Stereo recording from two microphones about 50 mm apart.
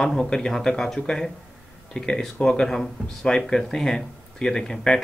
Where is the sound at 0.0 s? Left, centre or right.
Centre.